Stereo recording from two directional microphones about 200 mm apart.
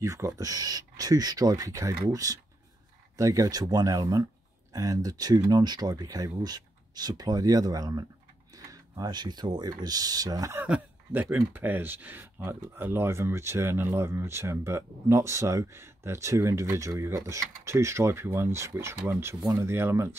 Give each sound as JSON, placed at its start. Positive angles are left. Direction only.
{"t": 0.0, "sound": "speech", "side_deg": -15}